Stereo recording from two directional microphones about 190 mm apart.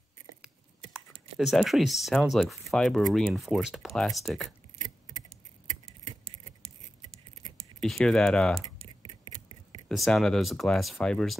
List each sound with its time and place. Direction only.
1.4 s speech: centre (ahead or behind)
7.8 s speech: 5° left (ahead or behind)
9.0 s a sound: 25° right (ahead or behind)
9.8 s speech: centre (ahead or behind)